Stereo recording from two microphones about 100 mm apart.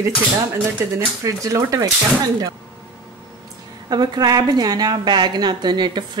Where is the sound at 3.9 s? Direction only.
45° right (ahead or behind).